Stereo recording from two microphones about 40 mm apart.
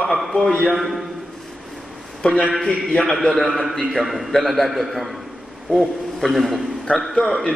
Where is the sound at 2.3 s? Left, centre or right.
Left.